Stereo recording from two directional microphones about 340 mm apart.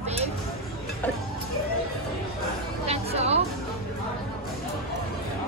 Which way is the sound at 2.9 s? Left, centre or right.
Centre.